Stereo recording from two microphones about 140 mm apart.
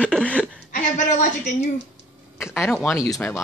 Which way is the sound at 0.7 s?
65° left (ahead or behind).